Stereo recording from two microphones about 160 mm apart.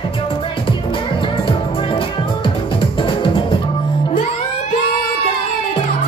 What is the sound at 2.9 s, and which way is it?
Music, 35° left (ahead or behind).